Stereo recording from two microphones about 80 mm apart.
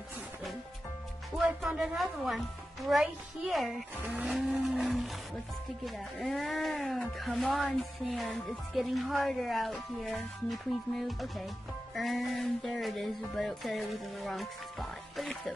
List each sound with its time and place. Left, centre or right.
2.2 s speech: centre
3.9 s speech: centre
4.3 s speech: centre
4.6 s a sound: centre
5.9 s speech: centre